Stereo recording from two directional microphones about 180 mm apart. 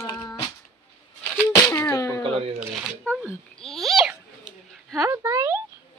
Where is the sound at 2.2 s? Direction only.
30° right (ahead or behind).